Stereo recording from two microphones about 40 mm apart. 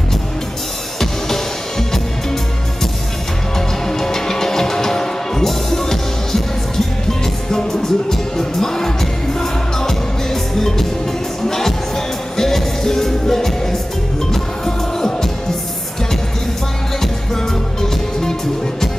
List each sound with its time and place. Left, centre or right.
0.9 s music: centre
3.5 s music: centre
17.0 s music: centre